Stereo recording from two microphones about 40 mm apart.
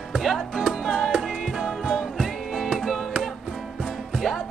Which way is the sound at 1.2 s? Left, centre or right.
Centre.